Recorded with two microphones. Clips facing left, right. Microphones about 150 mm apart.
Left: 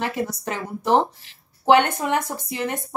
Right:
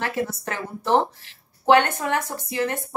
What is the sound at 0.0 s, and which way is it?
Speech, 15° left (ahead or behind).